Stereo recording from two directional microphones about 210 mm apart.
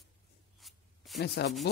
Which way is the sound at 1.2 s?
55° left (ahead or behind).